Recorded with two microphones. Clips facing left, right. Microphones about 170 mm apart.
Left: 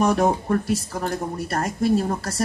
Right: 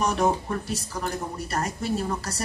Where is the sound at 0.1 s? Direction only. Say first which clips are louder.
Left 4 dB; 50° left (ahead or behind).